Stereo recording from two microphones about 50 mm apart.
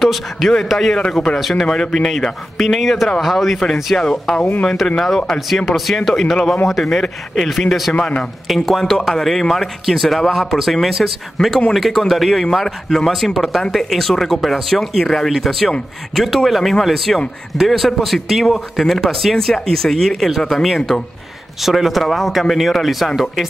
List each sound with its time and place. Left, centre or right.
0.0 s speech: centre
8.0 s speech: centre